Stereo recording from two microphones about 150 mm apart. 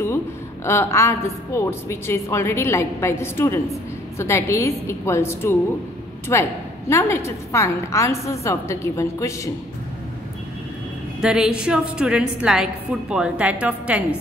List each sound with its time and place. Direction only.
0.7 s a woman's voice: 20° left (ahead or behind)
11.1 s a woman's voice: 5° right (ahead or behind)